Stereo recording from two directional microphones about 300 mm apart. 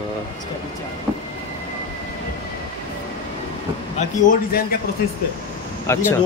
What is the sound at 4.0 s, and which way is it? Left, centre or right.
Speech, left.